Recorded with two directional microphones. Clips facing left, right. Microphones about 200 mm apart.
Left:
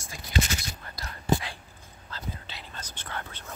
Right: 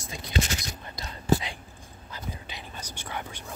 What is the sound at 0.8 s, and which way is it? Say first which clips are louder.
Whispering: right 2 dB; 20° right (ahead or behind).